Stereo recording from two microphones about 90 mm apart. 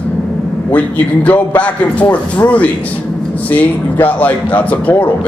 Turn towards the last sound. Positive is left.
turn(degrees=15)  # may be behind; listen again after turning